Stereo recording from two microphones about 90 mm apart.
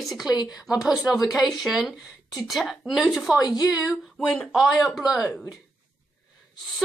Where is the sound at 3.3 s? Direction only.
45° left (ahead or behind).